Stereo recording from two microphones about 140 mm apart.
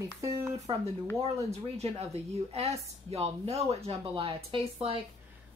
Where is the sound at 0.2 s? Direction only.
25° right (ahead or behind).